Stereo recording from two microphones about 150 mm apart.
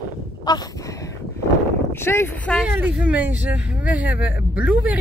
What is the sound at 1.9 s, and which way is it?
Speech, 15° left (ahead or behind).